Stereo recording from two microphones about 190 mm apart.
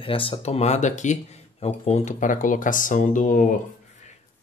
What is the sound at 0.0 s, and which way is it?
Speech, 30° left (ahead or behind).